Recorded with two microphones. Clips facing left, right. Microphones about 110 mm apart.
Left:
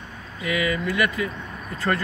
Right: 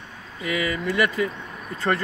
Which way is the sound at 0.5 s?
35° right (ahead or behind).